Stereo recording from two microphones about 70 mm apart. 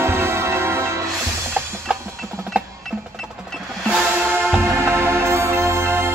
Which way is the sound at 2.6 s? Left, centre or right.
Centre.